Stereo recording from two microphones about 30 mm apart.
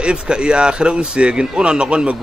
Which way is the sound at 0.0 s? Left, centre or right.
Right.